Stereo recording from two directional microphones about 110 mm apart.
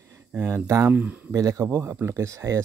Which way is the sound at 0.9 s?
15° right (ahead or behind).